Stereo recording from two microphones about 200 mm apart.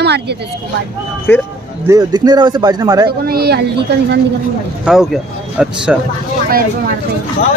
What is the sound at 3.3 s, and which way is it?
Speech, 50° right (ahead or behind).